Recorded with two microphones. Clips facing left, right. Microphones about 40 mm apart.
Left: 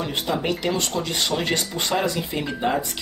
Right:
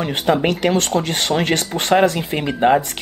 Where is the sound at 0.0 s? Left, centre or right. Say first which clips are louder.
Right 7 dB; right.